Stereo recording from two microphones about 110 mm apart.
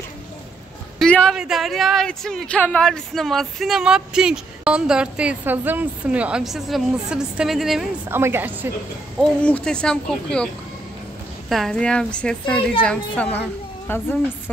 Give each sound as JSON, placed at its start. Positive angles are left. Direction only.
{"t": 0.9, "sound": "a sound", "side_deg": 5}
{"t": 1.3, "sound": "a woman's voice", "side_deg": -5}
{"t": 8.1, "sound": "a woman's voice", "side_deg": -20}
{"t": 9.2, "sound": "speech", "side_deg": 10}